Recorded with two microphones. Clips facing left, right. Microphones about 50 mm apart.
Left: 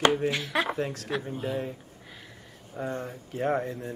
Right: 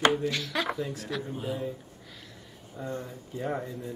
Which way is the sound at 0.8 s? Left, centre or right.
Left.